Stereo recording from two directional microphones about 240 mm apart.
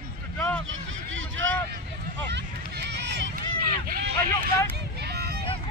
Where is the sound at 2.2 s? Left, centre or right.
Right.